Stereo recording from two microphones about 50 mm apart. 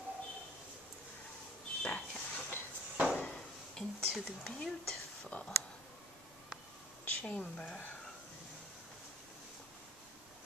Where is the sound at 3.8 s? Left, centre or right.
Centre.